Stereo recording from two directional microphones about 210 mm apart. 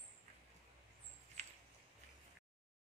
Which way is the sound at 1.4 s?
35° right (ahead or behind).